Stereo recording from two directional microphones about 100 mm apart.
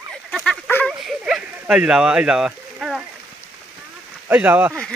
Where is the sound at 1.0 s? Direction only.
5° right (ahead or behind).